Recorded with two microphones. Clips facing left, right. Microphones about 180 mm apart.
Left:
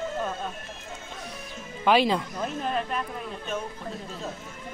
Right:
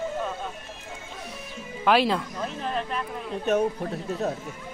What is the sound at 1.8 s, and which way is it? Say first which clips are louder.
Speech: even; centre (ahead or behind).